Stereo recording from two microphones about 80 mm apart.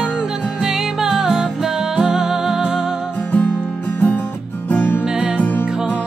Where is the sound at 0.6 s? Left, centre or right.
Centre.